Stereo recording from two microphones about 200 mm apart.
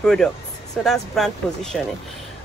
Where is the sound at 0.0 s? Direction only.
Centre (ahead or behind).